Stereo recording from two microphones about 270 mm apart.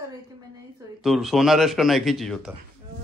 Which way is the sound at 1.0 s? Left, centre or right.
Centre.